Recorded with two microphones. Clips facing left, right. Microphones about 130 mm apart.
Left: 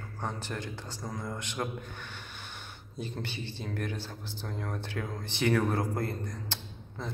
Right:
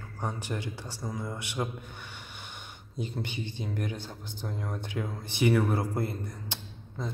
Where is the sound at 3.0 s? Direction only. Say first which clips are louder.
Right 2 dB; 15° right (ahead or behind).